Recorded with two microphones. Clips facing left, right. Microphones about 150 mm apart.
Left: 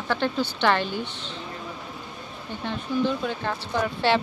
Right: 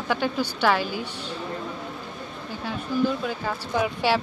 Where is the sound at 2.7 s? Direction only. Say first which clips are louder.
Right 1 dB; 5° right (ahead or behind).